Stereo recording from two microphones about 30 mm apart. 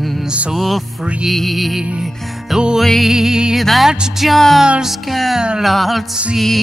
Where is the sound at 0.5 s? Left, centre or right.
Centre.